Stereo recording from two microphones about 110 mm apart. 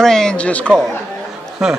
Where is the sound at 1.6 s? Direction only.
5° right (ahead or behind).